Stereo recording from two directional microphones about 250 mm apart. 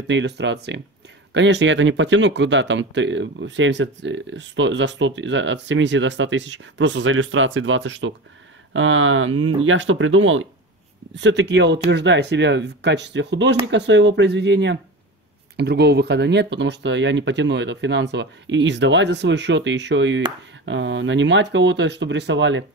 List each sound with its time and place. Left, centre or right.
0.1 s speech: right